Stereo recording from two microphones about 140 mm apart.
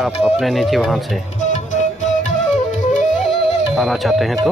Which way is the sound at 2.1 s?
60° left (ahead or behind).